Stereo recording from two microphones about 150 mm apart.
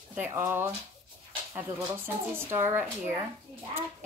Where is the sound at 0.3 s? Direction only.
15° right (ahead or behind).